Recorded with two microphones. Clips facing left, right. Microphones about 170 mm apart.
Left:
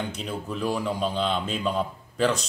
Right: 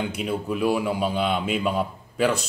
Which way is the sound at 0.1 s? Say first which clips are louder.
Right 5 dB; 10° right (ahead or behind).